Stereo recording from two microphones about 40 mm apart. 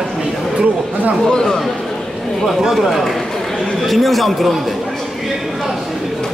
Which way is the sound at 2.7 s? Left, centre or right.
Centre.